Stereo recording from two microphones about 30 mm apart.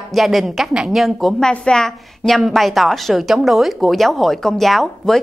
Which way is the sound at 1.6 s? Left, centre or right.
Centre.